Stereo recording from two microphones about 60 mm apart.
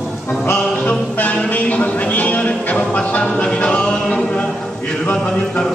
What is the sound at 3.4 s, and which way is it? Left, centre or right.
A capella, centre.